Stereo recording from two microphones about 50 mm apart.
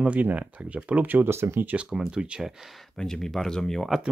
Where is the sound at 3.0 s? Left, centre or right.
Centre.